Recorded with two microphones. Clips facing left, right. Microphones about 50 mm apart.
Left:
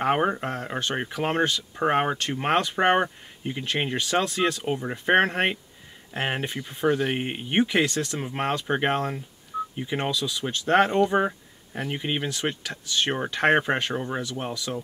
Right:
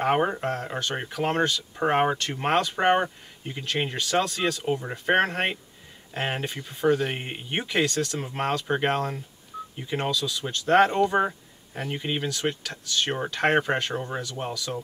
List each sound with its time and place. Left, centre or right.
0.0 s speech: centre
1.8 s speech: centre